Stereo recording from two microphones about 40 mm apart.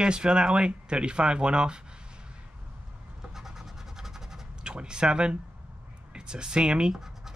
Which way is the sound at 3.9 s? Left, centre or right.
Centre.